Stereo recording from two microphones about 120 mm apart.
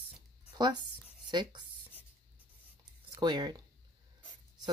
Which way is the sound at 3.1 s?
35° right (ahead or behind).